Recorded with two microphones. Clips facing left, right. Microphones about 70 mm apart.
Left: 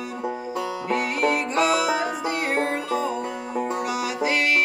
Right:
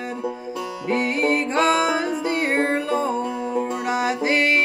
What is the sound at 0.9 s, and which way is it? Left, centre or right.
Music, right.